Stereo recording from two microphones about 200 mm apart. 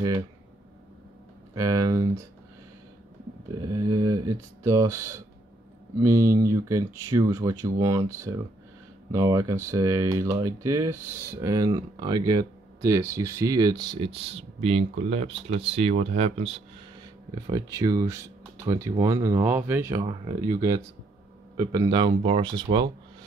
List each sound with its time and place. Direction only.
1.5 s speech: 15° right (ahead or behind)
3.7 s speech: 20° right (ahead or behind)
17.5 s speech: 15° right (ahead or behind)
21.5 s speech: 20° right (ahead or behind)